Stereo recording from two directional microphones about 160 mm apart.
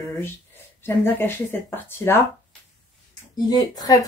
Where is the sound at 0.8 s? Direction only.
15° left (ahead or behind).